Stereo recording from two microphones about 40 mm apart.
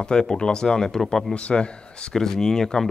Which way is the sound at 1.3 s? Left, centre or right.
Left.